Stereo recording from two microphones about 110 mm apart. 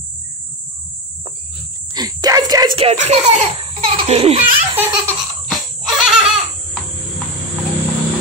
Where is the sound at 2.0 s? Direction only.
35° right (ahead or behind).